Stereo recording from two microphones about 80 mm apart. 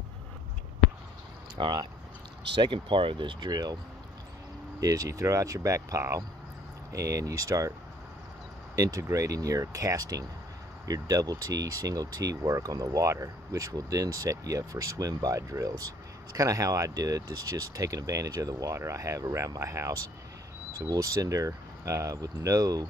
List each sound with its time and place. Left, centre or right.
1.6 s speech: right
2.6 s speech: right
3.4 s speech: right
4.7 s speech: right
8.7 s speech: right